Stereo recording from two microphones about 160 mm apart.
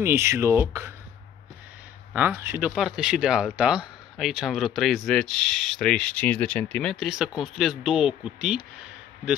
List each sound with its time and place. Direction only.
0.0 s speech: 15° right (ahead or behind)
2.1 s speech: 10° right (ahead or behind)